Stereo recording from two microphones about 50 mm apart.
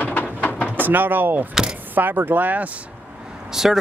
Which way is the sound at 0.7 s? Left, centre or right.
Right.